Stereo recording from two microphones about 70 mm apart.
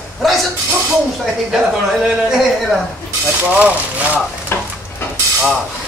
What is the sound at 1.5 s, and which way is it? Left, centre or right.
Speech, centre.